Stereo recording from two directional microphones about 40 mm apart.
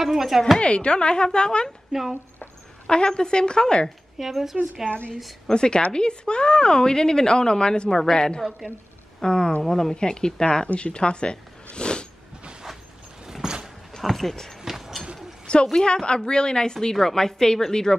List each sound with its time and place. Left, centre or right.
0.0 s speech: centre
0.6 s a woman's voice: left
1.9 s speech: centre
2.9 s a woman's voice: left
4.2 s speech: centre
4.8 s a woman's voice: centre
9.9 s a woman's voice: left
10.7 s zipper: left
13.3 s a sound: centre
14.0 s speech: centre
15.4 s a woman's voice: left